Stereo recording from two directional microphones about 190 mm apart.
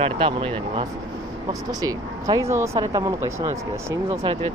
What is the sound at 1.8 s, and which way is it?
Speech, 15° right (ahead or behind).